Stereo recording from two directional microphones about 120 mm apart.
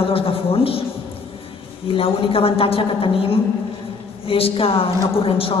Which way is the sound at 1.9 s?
50° left (ahead or behind).